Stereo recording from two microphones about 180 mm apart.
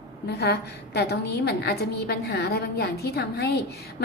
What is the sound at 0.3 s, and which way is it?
A woman's voice, 65° left (ahead or behind).